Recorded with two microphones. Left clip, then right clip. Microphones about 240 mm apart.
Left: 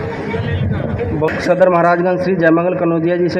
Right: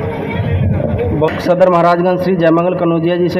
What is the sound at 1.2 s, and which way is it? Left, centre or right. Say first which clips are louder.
A man's voice: right 1 dB; right.